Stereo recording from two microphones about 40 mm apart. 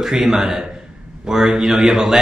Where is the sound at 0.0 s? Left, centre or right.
Centre.